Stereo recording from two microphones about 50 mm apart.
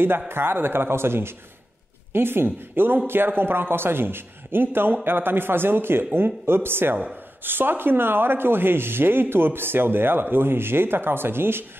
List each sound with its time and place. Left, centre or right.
0.3 s speech: right